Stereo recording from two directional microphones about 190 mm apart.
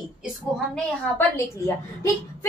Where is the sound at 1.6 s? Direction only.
15° left (ahead or behind).